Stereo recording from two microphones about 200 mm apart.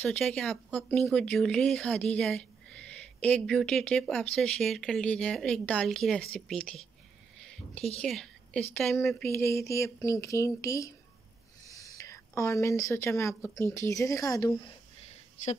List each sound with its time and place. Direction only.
0.0 s speech: 5° left (ahead or behind)
7.3 s a sound: 5° left (ahead or behind)
8.0 s speech: centre (ahead or behind); by 14.7 s 25° left (ahead or behind)